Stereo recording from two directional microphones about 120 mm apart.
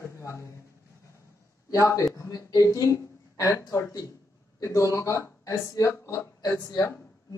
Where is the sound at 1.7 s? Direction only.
25° left (ahead or behind).